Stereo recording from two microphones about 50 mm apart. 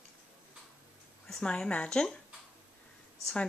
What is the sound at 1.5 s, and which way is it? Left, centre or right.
Speech, left.